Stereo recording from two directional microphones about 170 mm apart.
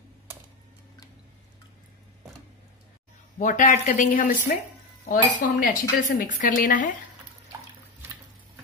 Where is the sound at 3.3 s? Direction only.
45° left (ahead or behind).